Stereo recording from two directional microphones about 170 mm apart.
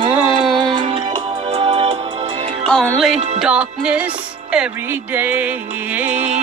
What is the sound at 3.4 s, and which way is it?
Music, 5° right (ahead or behind).